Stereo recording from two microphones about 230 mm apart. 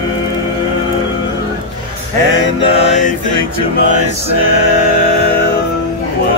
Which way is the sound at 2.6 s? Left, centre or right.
Left.